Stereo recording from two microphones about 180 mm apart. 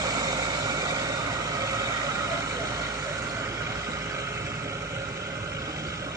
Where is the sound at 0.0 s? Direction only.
20° right (ahead or behind).